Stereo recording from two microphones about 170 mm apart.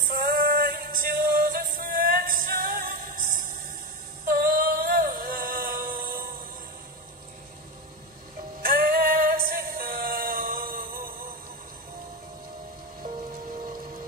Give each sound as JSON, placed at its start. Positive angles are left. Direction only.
{"t": 0.1, "sound": "music", "side_deg": -60}
{"t": 8.6, "sound": "music", "side_deg": -60}